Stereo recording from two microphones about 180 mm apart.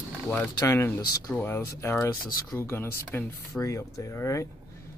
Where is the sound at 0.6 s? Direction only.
15° left (ahead or behind).